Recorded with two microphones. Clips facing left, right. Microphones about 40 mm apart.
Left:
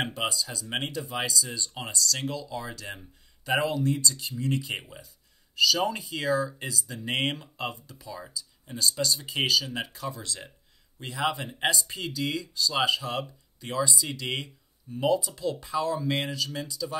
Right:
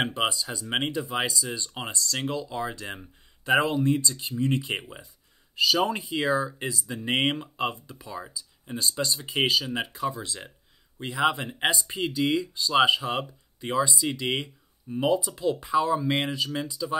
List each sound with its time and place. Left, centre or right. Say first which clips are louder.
0.2 s speech: right 3 dB; right